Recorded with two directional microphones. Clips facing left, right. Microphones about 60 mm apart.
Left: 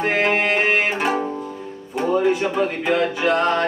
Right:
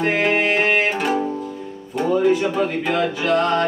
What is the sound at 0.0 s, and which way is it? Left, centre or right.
Music, centre.